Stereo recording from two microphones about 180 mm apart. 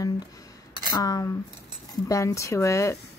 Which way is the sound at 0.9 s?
20° left (ahead or behind).